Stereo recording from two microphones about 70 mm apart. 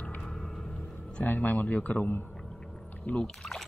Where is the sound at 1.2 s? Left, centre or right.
Left.